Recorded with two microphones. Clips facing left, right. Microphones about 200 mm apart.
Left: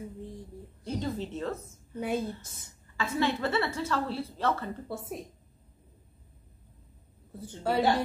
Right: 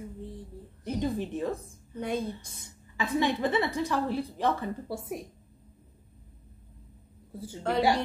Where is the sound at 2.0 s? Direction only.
5° left (ahead or behind).